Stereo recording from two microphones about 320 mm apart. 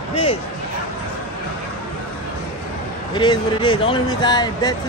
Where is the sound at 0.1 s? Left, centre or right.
Centre.